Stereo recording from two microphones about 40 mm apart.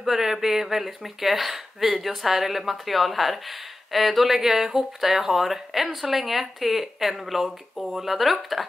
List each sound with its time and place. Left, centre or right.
0.0 s speech: centre